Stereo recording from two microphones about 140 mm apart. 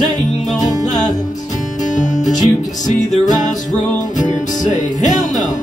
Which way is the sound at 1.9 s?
60° left (ahead or behind).